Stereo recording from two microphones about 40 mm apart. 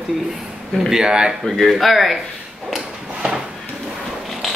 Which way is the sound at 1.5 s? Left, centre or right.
Centre.